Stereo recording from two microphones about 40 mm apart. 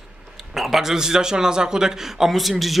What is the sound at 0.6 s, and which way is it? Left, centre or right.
A man's voice, centre.